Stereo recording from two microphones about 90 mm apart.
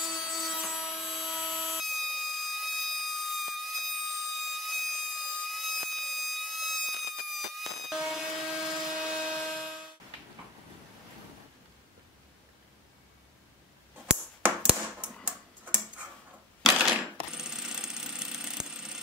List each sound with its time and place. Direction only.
0.0 s wood: 5° right (ahead or behind)
15.2 s tick-tock: 15° right (ahead or behind)
16.6 s coin: 5° right (ahead or behind)